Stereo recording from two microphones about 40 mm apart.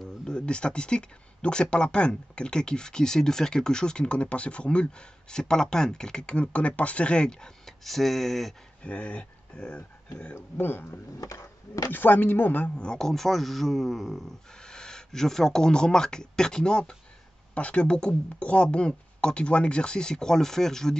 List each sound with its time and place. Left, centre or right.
0.3 s speech: left
7.2 s speech: centre
7.8 s speech: centre
8.8 s speech: left
10.3 s speech: left
11.9 s speech: left
12.7 s speech: left
13.0 s speech: centre
14.5 s speech: centre